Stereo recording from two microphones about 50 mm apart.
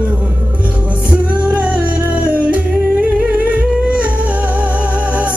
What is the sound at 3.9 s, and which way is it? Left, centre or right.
Music, right.